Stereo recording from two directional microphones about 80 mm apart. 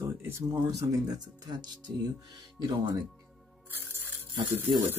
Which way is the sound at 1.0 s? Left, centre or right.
Right.